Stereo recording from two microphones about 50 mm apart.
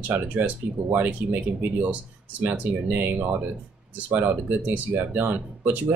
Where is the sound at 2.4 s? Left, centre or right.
Right.